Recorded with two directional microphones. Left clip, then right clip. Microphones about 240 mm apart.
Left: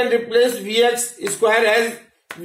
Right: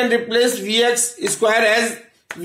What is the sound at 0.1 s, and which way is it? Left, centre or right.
A man's voice, right.